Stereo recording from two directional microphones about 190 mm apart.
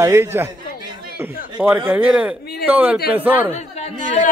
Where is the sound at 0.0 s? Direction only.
10° right (ahead or behind).